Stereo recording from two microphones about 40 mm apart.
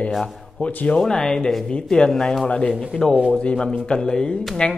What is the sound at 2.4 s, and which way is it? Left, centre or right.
A man's voice, left.